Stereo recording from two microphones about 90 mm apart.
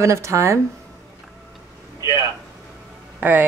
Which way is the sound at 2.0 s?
35° right (ahead or behind).